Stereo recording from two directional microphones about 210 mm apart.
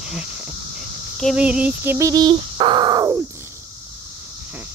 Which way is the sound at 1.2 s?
5° right (ahead or behind).